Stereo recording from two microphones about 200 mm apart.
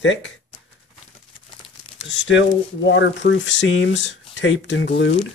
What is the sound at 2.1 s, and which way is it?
Speech, 65° left (ahead or behind).